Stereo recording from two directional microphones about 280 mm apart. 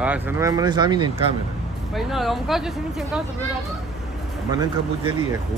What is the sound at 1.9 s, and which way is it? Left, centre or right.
A man's voice, centre.